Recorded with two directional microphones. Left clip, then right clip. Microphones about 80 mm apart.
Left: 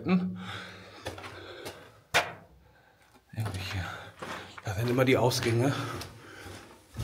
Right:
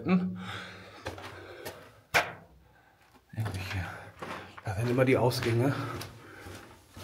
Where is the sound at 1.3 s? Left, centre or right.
Left.